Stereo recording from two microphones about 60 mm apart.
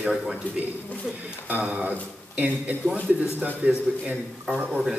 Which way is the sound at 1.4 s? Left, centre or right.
Right.